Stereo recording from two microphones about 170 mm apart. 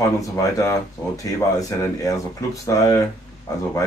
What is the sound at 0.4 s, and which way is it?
Speech, 20° left (ahead or behind).